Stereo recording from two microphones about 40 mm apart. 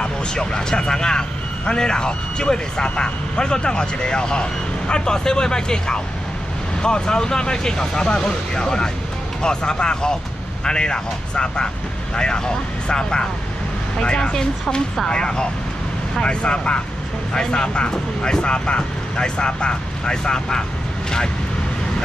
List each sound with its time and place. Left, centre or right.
0.0 s speech: centre